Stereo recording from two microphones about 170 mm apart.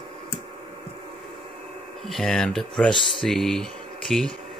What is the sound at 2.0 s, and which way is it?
Speech, centre (ahead or behind).